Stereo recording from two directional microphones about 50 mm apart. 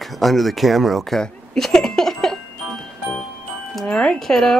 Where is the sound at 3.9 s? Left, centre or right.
Centre.